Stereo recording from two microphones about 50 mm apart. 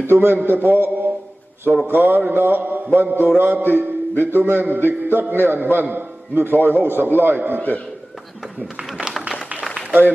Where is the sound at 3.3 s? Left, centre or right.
Right.